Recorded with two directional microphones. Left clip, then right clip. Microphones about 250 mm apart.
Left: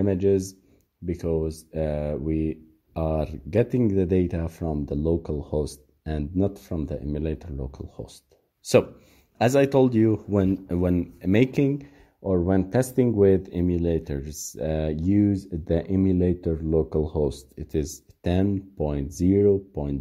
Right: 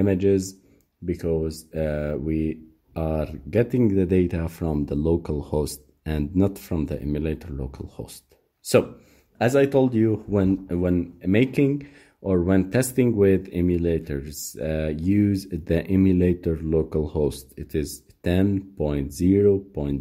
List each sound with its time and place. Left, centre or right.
0.0 s speech: centre
9.4 s speech: left
12.2 s speech: centre